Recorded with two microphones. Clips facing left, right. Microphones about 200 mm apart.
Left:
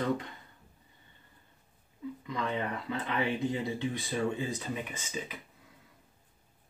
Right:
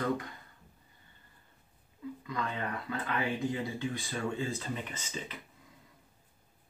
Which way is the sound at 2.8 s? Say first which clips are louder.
Even; 20° left (ahead or behind).